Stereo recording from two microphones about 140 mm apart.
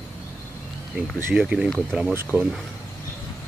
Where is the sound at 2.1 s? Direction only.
20° right (ahead or behind).